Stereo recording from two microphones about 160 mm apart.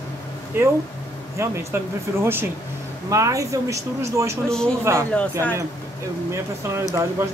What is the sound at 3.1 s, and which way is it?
Speech, 20° right (ahead or behind).